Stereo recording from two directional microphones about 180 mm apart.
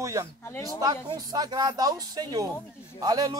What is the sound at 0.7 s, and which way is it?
A man's voice, 20° right (ahead or behind).